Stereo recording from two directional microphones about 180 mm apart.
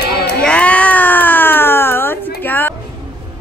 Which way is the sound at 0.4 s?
5° left (ahead or behind).